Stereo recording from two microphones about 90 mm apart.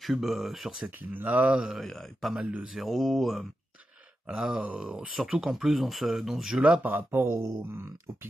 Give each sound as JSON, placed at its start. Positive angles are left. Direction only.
{"t": 0.0, "sound": "speech", "side_deg": 0}
{"t": 0.8, "sound": "speech", "side_deg": -20}
{"t": 1.9, "sound": "speech", "side_deg": 5}
{"t": 2.3, "sound": "speech", "side_deg": -10}
{"t": 2.8, "sound": "speech", "side_deg": 0}
{"t": 6.8, "sound": "speech", "side_deg": -20}